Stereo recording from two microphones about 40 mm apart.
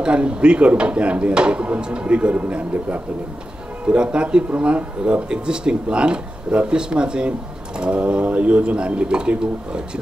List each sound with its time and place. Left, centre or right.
0.0 s speech: right
2.1 s a man's voice: right